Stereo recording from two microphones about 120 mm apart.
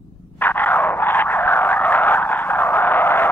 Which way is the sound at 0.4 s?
15° left (ahead or behind).